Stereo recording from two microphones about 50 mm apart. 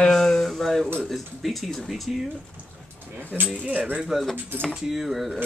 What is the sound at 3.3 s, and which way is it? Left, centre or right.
Speech, centre.